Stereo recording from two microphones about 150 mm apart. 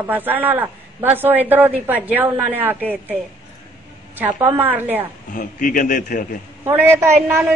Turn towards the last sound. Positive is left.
turn(degrees=-15)  # may be behind; listen again after turning